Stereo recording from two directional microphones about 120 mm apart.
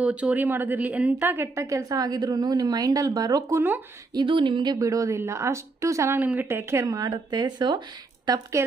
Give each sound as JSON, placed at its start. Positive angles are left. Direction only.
{"t": 0.0, "sound": "a woman's voice", "side_deg": -10}
{"t": 4.1, "sound": "speech", "side_deg": -40}
{"t": 4.7, "sound": "a woman's voice", "side_deg": -25}
{"t": 8.3, "sound": "a woman's voice", "side_deg": -25}